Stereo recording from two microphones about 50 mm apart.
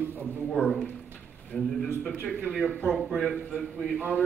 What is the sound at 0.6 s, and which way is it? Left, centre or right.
Speech, left.